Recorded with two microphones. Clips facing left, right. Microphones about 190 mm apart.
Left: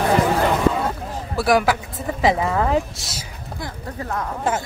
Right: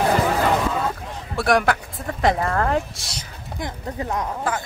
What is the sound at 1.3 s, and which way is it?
Speech, centre (ahead or behind).